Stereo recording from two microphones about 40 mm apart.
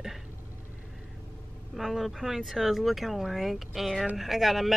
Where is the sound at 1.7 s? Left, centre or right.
Centre.